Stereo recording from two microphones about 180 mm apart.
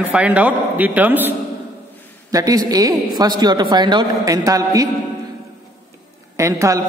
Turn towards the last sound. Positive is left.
turn(degrees=-15)  # may be behind; listen again after turning